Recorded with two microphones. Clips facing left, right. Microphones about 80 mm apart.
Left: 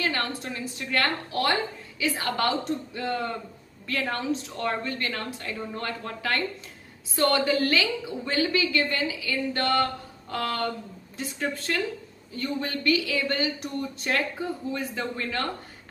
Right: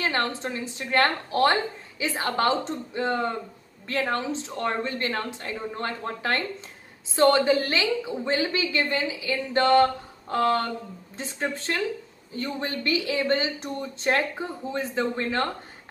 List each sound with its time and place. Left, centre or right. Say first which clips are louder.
0.0 s a woman's voice: right 2 dB; right